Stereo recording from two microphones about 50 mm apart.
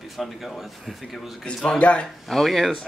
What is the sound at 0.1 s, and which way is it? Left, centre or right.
Speech, centre.